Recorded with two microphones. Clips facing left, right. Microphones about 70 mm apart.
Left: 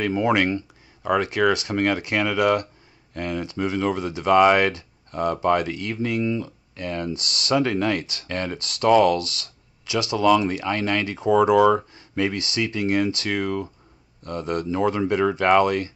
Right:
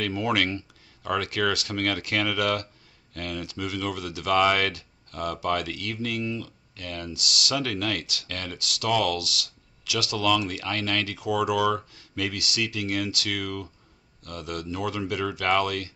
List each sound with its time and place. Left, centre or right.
0.0 s speech: left